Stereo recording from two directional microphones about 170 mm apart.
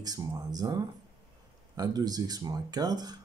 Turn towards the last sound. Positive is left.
turn(degrees=-25)  # may be behind; listen again after turning